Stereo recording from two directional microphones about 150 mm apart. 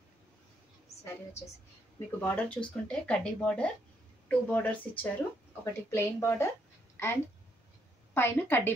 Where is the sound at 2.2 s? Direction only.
10° left (ahead or behind).